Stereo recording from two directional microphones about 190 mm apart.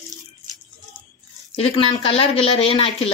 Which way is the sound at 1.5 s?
30° left (ahead or behind).